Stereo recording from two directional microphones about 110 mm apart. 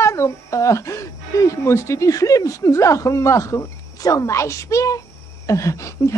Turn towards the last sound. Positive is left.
turn(degrees=25)  # may be behind; listen again after turning